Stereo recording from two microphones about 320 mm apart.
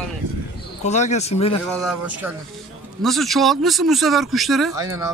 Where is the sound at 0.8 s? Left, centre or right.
Left.